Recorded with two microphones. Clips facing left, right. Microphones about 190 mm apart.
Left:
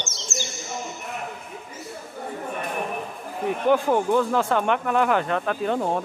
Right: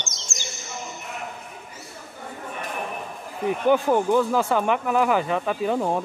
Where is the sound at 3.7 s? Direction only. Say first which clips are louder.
Right 1 dB; centre (ahead or behind).